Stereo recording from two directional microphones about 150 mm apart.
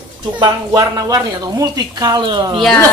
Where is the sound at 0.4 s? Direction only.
25° right (ahead or behind).